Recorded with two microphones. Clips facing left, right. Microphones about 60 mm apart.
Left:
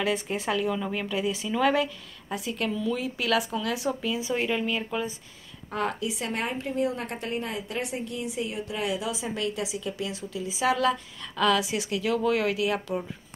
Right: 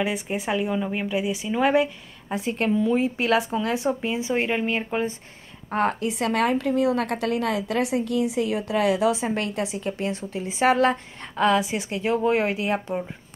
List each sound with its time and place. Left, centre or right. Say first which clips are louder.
0.0 s a woman's voice: right 1 dB; centre